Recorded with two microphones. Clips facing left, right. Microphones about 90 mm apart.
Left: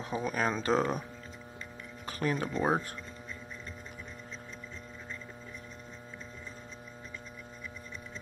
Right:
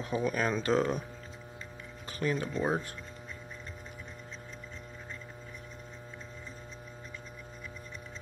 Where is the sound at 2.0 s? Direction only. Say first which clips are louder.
Even; 40° left (ahead or behind).